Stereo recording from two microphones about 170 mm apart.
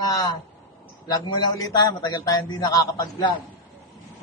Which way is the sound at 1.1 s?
20° left (ahead or behind).